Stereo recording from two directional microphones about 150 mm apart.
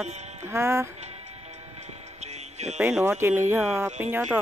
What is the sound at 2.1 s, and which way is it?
Music, 50° right (ahead or behind).